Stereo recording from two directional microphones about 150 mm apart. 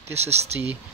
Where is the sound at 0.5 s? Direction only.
15° right (ahead or behind).